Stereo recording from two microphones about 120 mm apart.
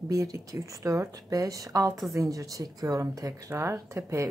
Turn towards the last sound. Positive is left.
turn(degrees=-25)  # may be behind; listen again after turning